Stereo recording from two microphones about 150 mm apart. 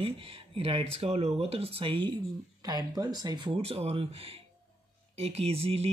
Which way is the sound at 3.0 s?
25° right (ahead or behind).